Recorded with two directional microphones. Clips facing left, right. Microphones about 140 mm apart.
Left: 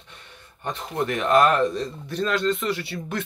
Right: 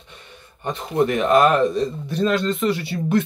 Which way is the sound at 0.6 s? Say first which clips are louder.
Right 6 dB; 15° right (ahead or behind).